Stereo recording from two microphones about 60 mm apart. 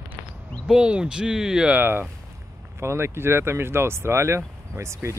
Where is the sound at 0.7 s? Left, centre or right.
Centre.